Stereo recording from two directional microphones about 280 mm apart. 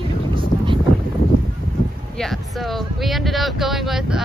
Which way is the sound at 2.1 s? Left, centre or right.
Centre.